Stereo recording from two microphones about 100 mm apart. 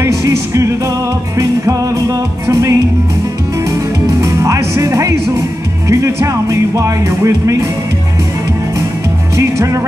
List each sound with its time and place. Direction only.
0.0 s music: 30° right (ahead or behind)
4.4 s music: 30° right (ahead or behind)
9.4 s music: 30° right (ahead or behind)